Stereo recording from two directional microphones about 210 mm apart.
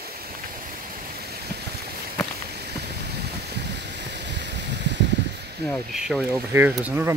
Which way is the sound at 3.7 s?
55° right (ahead or behind).